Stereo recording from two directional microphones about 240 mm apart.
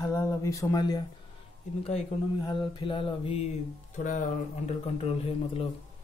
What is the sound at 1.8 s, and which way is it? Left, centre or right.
A man's voice, left.